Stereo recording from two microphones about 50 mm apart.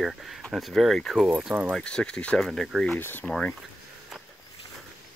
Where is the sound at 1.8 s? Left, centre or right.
Centre.